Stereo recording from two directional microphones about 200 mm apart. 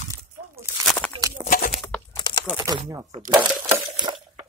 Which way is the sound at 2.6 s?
20° right (ahead or behind).